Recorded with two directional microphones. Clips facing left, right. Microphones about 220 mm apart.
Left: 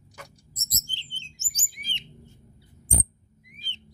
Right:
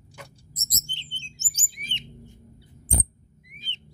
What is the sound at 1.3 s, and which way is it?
Chirp, 25° right (ahead or behind).